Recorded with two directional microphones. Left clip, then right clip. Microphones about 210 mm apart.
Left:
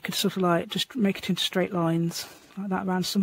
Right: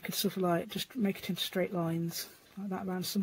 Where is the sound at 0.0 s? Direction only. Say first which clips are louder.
Left 7 dB; 45° left (ahead or behind).